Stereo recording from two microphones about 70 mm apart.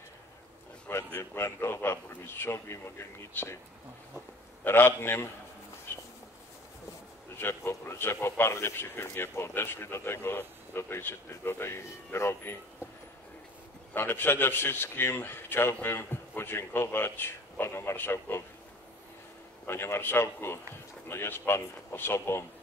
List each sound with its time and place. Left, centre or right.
0.8 s a man's voice: left
4.6 s a man's voice: left
5.9 s a sound: left
7.3 s a man's voice: left
13.9 s a man's voice: left
19.6 s a man's voice: left